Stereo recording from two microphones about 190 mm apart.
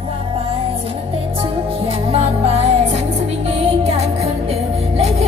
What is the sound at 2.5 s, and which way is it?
Music, 35° right (ahead or behind).